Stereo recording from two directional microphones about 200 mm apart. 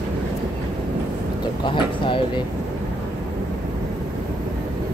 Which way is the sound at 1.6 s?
25° left (ahead or behind).